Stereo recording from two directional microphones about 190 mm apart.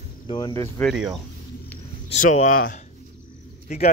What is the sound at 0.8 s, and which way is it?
Speech, centre (ahead or behind).